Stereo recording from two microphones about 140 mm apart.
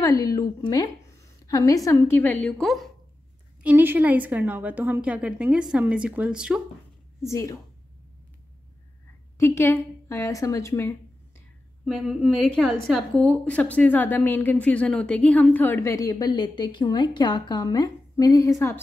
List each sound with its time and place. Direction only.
0.0 s a woman's voice: 25° left (ahead or behind)
2.4 s a woman's voice: 5° left (ahead or behind)
3.6 s a woman's voice: 15° right (ahead or behind)
7.2 s a woman's voice: 20° left (ahead or behind)
9.4 s a woman's voice: 20° left (ahead or behind)
11.8 s a woman's voice: centre (ahead or behind); by 18.8 s 20° left (ahead or behind)